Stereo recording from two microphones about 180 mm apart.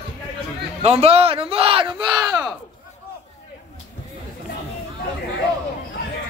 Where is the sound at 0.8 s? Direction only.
35° right (ahead or behind).